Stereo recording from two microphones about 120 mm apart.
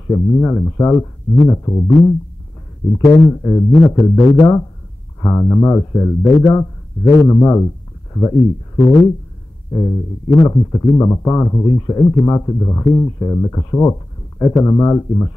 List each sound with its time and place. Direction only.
0.1 s speech: 25° left (ahead or behind)